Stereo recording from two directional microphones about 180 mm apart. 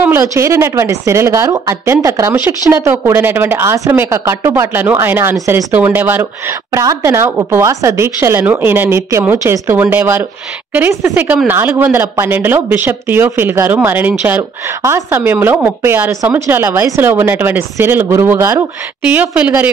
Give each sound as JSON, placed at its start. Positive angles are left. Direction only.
{"t": 0.0, "sound": "speech", "side_deg": -15}